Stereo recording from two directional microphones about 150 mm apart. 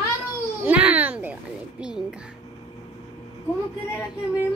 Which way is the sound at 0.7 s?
10° right (ahead or behind).